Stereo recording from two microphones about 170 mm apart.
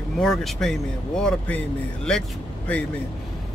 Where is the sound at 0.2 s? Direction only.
Centre (ahead or behind).